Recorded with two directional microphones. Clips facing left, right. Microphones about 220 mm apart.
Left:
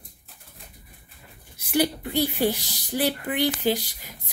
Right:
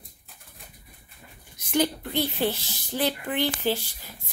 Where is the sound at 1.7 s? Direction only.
10° left (ahead or behind).